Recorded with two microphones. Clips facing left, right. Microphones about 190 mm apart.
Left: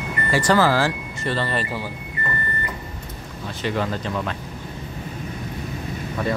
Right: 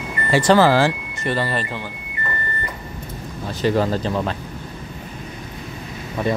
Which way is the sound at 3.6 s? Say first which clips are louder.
Right 6 dB; 35° right (ahead or behind).